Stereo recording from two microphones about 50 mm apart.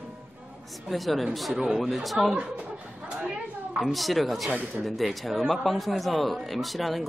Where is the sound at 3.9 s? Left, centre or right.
Centre.